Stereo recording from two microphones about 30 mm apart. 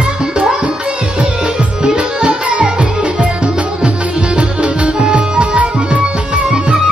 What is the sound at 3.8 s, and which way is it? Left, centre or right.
Music, right.